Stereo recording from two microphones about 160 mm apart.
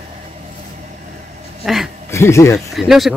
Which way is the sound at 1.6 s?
Centre (ahead or behind).